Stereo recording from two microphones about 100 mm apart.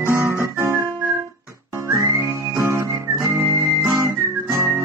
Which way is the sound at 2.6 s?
30° right (ahead or behind).